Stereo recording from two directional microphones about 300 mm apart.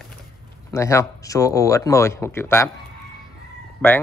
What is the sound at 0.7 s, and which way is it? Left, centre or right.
A man's voice, centre.